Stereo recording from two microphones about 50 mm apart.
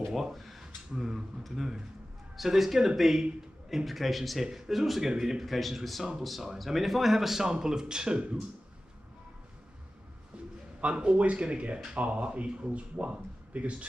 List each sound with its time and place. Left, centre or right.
0.1 s a man's voice: centre
5.4 s a man's voice: centre; by 8.4 s right
10.8 s speech: right